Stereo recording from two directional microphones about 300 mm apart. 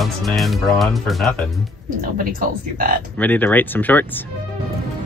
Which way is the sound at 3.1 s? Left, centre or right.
Centre.